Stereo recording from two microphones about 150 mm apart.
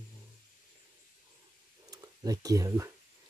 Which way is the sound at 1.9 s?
20° right (ahead or behind).